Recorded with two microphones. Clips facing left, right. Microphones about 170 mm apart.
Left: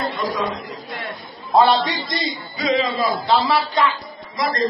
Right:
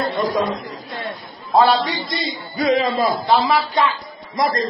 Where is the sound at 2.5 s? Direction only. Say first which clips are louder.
Right 3 dB; 55° right (ahead or behind).